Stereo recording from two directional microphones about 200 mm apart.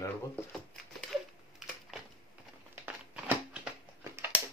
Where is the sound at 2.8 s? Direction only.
5° right (ahead or behind).